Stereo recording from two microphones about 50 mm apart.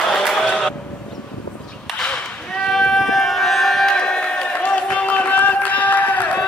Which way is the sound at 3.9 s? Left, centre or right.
Centre.